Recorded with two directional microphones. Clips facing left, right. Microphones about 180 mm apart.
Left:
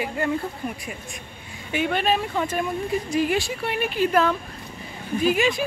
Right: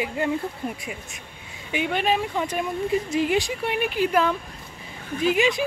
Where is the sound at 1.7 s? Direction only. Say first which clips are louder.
Left 1 dB; 15° right (ahead or behind).